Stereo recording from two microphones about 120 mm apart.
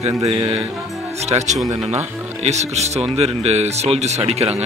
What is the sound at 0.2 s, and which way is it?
Speech, 55° right (ahead or behind).